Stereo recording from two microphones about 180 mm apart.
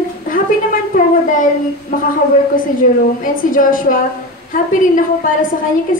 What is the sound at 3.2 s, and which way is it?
A man's voice, 50° left (ahead or behind).